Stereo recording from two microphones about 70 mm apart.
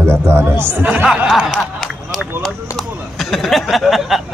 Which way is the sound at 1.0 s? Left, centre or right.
Centre.